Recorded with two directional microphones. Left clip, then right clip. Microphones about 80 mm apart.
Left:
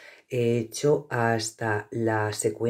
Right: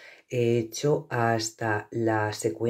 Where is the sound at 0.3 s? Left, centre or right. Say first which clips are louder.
Even; centre.